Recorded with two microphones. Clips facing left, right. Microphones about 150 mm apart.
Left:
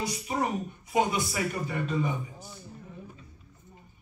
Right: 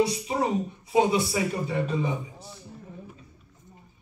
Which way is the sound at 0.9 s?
30° right (ahead or behind).